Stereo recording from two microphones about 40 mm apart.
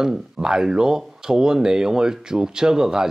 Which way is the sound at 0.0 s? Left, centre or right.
Centre.